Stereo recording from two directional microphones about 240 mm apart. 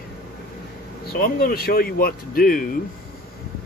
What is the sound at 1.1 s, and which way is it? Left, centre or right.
Speech, left.